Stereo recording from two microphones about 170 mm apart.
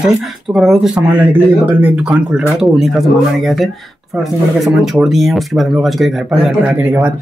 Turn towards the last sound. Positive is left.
turn(degrees=-10)  # may be behind; listen again after turning